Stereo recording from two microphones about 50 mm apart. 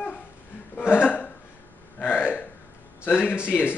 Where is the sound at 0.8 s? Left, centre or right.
Left.